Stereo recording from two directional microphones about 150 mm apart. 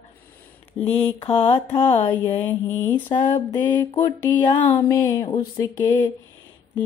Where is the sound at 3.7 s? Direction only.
30° left (ahead or behind).